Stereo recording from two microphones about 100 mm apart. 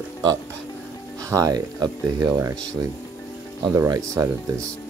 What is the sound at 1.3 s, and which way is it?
Speech, 40° right (ahead or behind).